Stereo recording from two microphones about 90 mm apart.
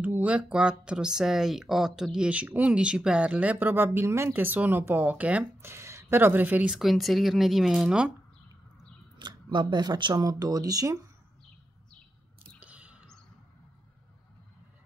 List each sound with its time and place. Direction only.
0.0 s speech: 20° right (ahead or behind)
5.6 s speech: 30° right (ahead or behind)
6.7 s speech: centre (ahead or behind)
9.2 s speech: 60° right (ahead or behind); by 11.0 s 40° right (ahead or behind)
12.5 s a sound: 15° right (ahead or behind)